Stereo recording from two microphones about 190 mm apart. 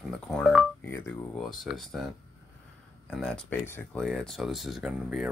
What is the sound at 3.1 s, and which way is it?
Speech, 5° left (ahead or behind).